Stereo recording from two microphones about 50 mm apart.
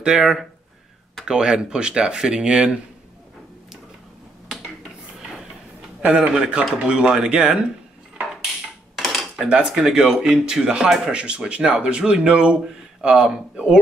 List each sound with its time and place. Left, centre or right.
0.0 s speech: centre
6.1 s speech: right
8.9 s cutlery: centre
9.5 s speech: centre